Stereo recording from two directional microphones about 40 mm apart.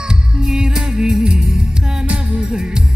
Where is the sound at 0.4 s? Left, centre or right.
Centre.